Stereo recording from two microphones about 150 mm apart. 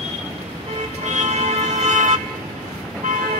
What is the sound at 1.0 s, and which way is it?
Music, 50° right (ahead or behind).